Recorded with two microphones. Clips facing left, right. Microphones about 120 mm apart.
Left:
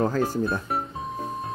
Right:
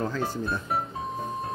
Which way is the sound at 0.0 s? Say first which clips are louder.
Left 6 dB; 45° left (ahead or behind).